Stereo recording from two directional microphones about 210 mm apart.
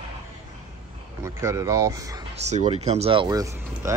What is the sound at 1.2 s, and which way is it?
Speech, 15° right (ahead or behind).